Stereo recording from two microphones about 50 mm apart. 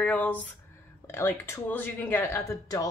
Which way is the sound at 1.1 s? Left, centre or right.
Left.